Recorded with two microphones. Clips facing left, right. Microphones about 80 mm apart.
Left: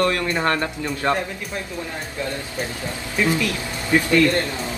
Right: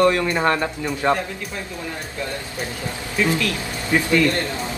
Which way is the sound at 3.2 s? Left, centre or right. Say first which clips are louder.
Left 1 dB; centre.